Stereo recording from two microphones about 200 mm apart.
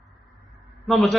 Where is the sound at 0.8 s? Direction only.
Centre (ahead or behind).